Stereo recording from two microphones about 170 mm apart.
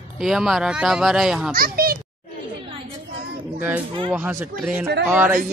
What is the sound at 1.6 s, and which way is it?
Speech, 60° right (ahead or behind).